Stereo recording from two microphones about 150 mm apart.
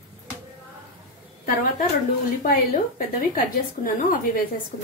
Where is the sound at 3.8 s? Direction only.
50° left (ahead or behind).